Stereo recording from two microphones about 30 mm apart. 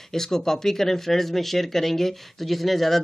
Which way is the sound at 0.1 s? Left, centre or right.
Centre.